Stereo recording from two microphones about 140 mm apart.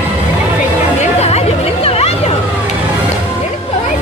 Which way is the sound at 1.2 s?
45° left (ahead or behind).